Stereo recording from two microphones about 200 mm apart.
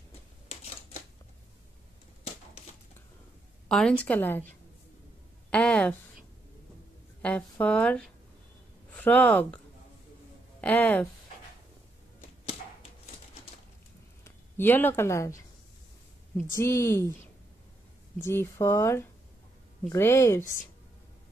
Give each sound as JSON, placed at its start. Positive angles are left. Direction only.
{"t": 3.6, "sound": "a woman's voice", "side_deg": 5}
{"t": 7.2, "sound": "a sound", "side_deg": 5}
{"t": 7.6, "sound": "speech", "side_deg": 5}
{"t": 10.6, "sound": "a woman's voice", "side_deg": 5}
{"t": 14.2, "sound": "speech", "side_deg": 10}
{"t": 16.3, "sound": "a woman's voice", "side_deg": 15}
{"t": 18.2, "sound": "a woman's voice", "side_deg": 15}